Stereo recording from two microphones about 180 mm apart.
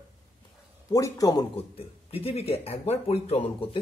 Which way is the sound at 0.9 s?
20° left (ahead or behind).